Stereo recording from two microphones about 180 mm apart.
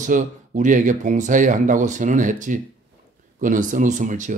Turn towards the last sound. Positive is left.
turn(degrees=-45)  # may be behind; listen again after turning